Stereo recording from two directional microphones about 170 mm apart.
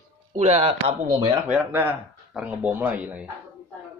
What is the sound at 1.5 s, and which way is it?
Speech, 10° right (ahead or behind).